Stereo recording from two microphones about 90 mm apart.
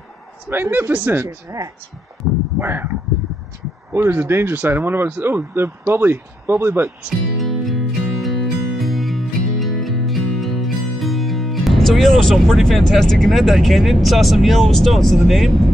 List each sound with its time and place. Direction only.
0.5 s speech: 25° right (ahead or behind)
2.2 s a sound: 25° right (ahead or behind)
2.6 s speech: 25° right (ahead or behind)
3.9 s speech: 25° right (ahead or behind)
7.3 s music: centre (ahead or behind)